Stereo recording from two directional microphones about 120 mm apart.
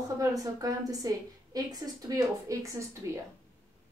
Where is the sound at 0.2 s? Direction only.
30° right (ahead or behind).